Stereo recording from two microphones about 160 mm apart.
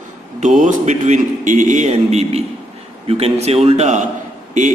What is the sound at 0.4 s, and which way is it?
A man's voice, 50° right (ahead or behind).